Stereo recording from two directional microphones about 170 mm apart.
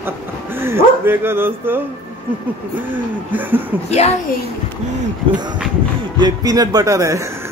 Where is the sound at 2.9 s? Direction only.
10° right (ahead or behind).